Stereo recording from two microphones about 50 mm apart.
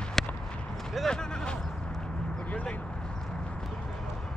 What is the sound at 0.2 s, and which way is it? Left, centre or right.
Run, centre.